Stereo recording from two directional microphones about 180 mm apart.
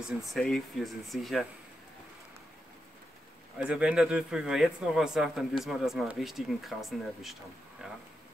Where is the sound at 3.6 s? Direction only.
5° right (ahead or behind).